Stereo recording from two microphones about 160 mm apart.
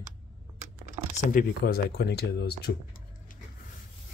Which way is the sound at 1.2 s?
65° left (ahead or behind).